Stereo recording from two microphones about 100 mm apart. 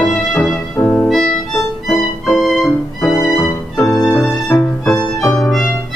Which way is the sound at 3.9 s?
30° left (ahead or behind).